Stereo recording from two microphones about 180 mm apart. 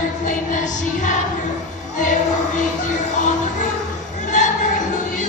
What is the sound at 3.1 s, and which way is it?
Music, 45° left (ahead or behind).